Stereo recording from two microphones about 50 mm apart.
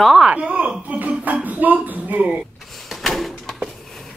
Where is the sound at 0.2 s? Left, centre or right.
Centre.